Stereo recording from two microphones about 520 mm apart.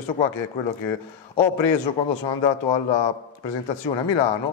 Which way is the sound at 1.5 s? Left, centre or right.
Left.